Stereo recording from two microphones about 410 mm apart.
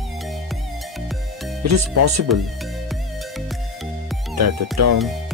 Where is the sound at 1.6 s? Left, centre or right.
Right.